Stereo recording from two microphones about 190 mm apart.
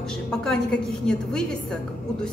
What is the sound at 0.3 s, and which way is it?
A woman's voice, 5° left (ahead or behind).